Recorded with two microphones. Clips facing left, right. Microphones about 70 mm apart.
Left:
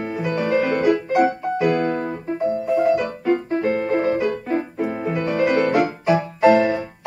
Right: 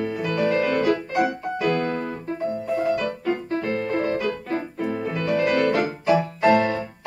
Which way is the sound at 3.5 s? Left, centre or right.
Left.